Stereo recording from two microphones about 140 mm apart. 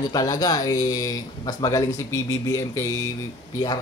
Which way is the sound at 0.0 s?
30° left (ahead or behind).